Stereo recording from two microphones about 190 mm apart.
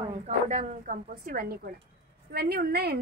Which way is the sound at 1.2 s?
55° right (ahead or behind).